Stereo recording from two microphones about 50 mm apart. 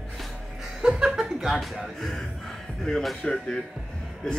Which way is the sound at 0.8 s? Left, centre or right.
Centre.